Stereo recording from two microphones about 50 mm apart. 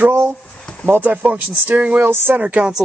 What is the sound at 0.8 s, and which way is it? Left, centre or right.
Speech, right.